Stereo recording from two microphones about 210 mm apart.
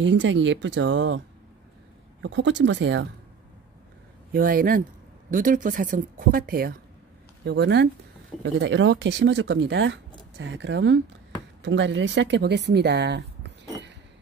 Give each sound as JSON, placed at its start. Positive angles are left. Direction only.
{"t": 0.0, "sound": "speech", "side_deg": -60}
{"t": 2.2, "sound": "speech", "side_deg": -60}
{"t": 4.3, "sound": "speech", "side_deg": -45}